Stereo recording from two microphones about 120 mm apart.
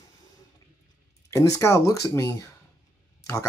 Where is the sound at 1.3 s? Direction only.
25° left (ahead or behind).